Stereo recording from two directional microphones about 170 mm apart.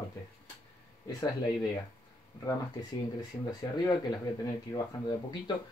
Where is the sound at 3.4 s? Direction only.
25° left (ahead or behind).